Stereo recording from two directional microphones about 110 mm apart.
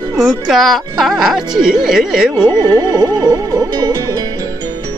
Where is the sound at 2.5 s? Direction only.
35° right (ahead or behind).